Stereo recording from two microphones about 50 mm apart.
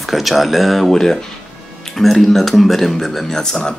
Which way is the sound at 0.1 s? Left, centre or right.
Centre.